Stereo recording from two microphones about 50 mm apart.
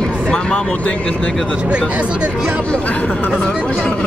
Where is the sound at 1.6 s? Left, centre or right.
Right.